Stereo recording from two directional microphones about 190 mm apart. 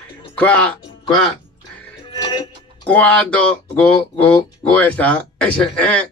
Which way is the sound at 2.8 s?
10° left (ahead or behind).